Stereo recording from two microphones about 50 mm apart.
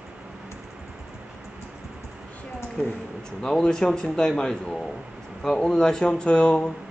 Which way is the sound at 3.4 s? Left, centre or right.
Centre.